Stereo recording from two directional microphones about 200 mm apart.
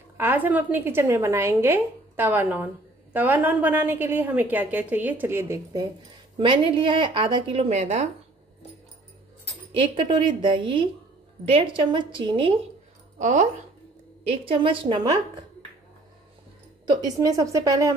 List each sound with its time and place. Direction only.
0.2 s a woman's voice: 10° right (ahead or behind); by 8.1 s 35° right (ahead or behind)
9.9 s a woman's voice: 25° right (ahead or behind)
13.2 s speech: 35° right (ahead or behind)
14.4 s a woman's voice: 25° right (ahead or behind)
16.8 s a woman's voice: 20° right (ahead or behind)